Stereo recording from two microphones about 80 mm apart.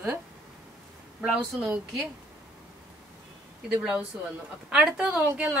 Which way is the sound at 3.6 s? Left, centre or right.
Centre.